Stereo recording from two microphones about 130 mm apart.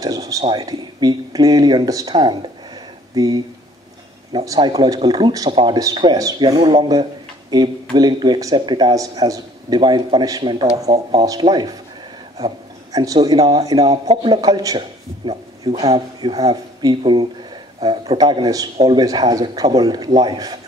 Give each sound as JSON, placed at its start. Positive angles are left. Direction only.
{"t": 0.0, "sound": "speech", "side_deg": -25}
{"t": 4.6, "sound": "speech", "side_deg": -30}
{"t": 19.0, "sound": "speech", "side_deg": -30}